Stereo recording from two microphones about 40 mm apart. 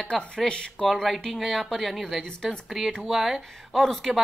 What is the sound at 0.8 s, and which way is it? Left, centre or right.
Speech, centre.